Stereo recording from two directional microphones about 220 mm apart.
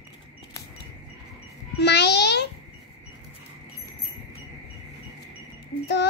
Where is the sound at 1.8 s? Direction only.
50° left (ahead or behind).